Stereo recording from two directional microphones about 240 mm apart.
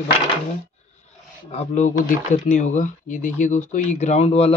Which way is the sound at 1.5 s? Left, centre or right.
Left.